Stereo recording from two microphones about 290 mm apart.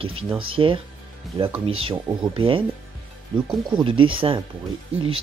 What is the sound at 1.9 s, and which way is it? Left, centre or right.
Speech, centre.